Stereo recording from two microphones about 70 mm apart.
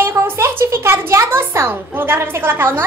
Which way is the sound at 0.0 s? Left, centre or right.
Right.